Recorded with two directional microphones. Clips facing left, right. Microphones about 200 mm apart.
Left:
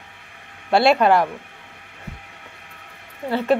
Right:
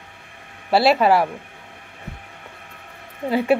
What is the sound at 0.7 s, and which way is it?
Speech, 5° right (ahead or behind).